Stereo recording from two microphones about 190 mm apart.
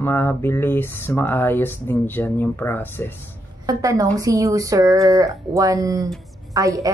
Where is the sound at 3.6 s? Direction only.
15° right (ahead or behind).